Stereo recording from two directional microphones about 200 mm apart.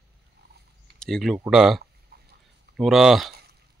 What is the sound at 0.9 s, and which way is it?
Speech, 5° left (ahead or behind).